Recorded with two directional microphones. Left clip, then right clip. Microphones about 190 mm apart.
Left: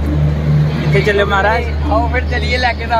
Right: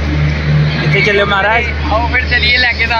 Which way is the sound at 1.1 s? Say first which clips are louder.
Even; centre (ahead or behind).